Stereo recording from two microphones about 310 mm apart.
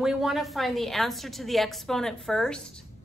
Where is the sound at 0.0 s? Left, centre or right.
Centre.